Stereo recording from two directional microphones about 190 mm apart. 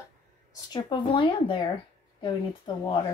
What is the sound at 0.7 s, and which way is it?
Speech, 25° left (ahead or behind).